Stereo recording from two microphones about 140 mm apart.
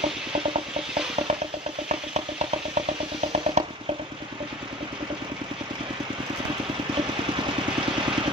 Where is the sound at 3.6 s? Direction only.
50° right (ahead or behind).